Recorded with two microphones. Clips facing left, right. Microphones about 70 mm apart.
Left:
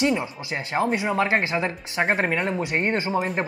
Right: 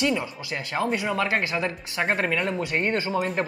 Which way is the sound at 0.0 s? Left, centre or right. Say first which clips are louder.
Left 2 dB; left.